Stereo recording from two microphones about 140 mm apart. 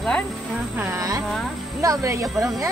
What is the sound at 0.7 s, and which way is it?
Speech, 20° right (ahead or behind).